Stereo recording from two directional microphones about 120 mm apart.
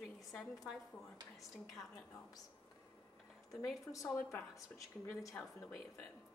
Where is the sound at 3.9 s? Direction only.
25° left (ahead or behind).